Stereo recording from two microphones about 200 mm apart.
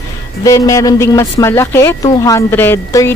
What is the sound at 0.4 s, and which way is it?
Speech, 15° left (ahead or behind).